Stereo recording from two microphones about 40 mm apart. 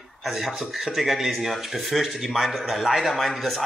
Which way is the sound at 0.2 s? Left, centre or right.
Centre.